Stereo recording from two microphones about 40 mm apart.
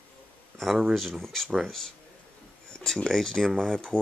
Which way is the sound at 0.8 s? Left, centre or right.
Centre.